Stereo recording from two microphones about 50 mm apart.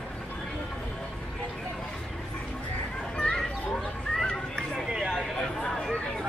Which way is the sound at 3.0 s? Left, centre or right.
Centre.